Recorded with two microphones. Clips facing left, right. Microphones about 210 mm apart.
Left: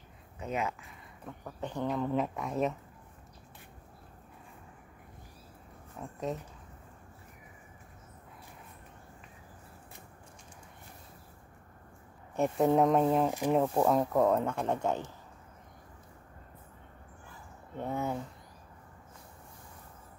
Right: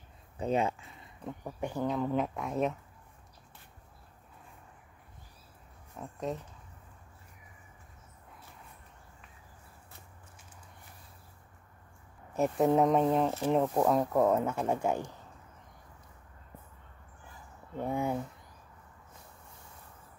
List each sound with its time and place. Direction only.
0.4 s speech: 30° right (ahead or behind)
1.4 s speech: 10° right (ahead or behind)
5.9 s speech: centre (ahead or behind)
12.4 s speech: centre (ahead or behind)
17.7 s speech: 10° right (ahead or behind)